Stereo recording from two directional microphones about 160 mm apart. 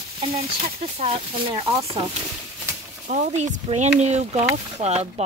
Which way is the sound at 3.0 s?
45° right (ahead or behind).